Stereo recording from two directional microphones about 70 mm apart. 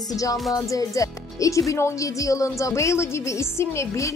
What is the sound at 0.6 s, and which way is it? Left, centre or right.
Speech, left.